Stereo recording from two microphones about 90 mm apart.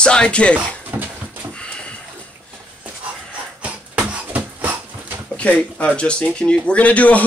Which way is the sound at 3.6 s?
15° right (ahead or behind).